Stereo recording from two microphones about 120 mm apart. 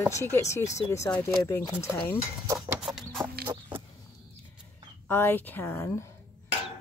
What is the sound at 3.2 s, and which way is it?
Chicken, 40° right (ahead or behind).